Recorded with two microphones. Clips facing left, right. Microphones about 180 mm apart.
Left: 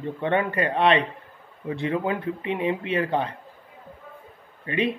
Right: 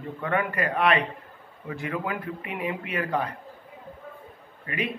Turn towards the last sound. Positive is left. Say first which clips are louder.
# left 6 dB
turn(degrees=30)  # may be behind; listen again after turning